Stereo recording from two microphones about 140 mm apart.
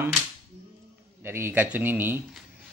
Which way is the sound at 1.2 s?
15° right (ahead or behind).